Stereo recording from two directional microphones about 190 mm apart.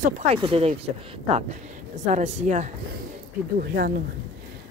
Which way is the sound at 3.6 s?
55° right (ahead or behind).